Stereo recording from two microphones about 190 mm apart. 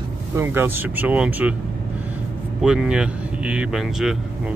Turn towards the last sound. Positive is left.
turn(degrees=0)  # may be behind; listen again after turning